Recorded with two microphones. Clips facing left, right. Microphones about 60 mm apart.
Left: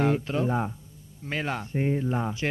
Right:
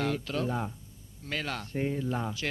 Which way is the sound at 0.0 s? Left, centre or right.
Left.